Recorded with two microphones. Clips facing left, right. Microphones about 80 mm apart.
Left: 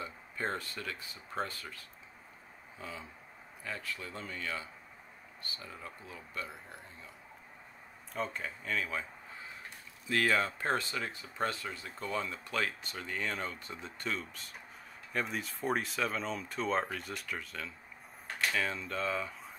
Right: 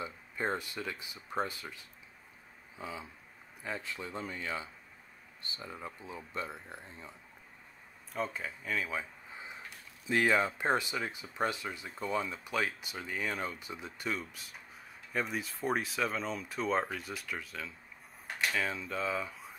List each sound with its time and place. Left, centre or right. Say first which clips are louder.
0.0 s speech: right 2 dB; centre
8.1 s speech: right 1 dB; centre
9.3 s a sound: right 1 dB; centre
10.0 s speech: right 2 dB; centre